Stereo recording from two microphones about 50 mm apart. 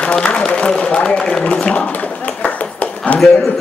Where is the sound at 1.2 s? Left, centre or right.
Centre.